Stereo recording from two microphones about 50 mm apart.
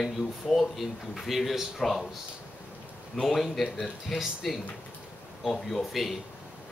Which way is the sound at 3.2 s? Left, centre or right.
Centre.